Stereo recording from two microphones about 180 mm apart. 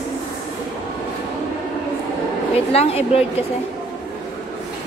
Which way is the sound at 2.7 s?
35° left (ahead or behind).